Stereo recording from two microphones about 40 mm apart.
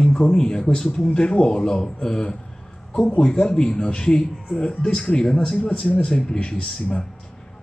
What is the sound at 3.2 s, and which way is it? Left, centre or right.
A man's voice, centre.